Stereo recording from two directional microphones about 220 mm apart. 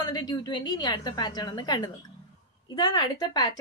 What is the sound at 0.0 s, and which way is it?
Speech, 15° left (ahead or behind).